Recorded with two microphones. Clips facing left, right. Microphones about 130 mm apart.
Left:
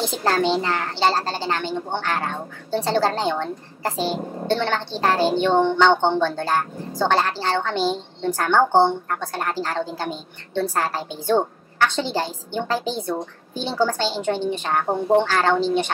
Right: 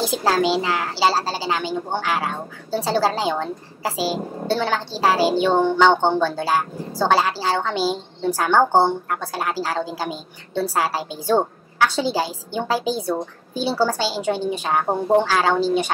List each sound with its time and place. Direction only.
0.0 s a woman's voice: 5° right (ahead or behind)